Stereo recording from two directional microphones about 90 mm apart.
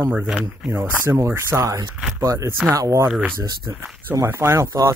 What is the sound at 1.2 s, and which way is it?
Speech, 30° right (ahead or behind).